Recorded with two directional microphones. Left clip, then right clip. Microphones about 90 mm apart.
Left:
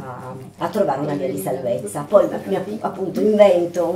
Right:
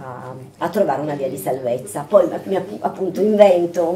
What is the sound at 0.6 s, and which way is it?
Speech, 20° right (ahead or behind).